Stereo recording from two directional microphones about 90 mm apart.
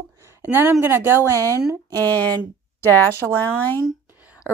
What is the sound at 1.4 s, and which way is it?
Speech, 40° right (ahead or behind).